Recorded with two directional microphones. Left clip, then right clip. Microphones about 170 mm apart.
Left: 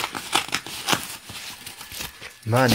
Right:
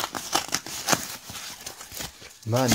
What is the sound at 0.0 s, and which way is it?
Crumpling, 25° right (ahead or behind).